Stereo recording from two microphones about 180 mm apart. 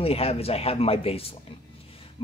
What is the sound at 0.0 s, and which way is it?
Speech, 35° left (ahead or behind).